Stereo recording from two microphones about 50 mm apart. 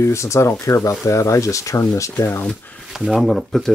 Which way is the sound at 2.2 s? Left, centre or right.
Left.